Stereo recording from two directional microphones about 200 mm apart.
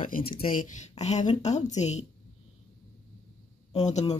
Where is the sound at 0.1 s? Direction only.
40° left (ahead or behind).